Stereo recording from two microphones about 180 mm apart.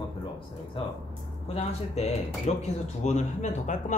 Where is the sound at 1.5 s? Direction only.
35° left (ahead or behind).